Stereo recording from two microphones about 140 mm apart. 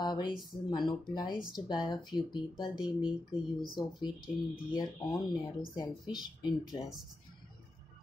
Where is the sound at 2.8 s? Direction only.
5° right (ahead or behind).